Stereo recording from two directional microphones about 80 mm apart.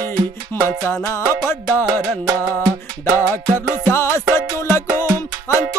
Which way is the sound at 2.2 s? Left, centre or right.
Right.